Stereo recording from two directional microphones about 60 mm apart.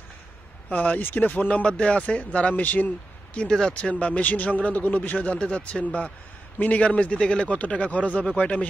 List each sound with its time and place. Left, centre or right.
0.7 s a man's voice: left
1.5 s a man's voice: centre
3.3 s speech: centre
3.9 s a man's voice: left